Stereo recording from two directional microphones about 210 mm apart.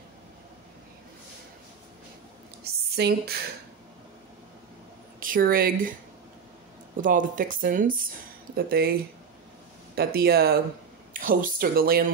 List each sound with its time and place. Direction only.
2.6 s a sound: 45° right (ahead or behind)
5.2 s speech: 40° right (ahead or behind)
7.0 s speech: 40° right (ahead or behind)
9.9 s speech: 50° right (ahead or behind)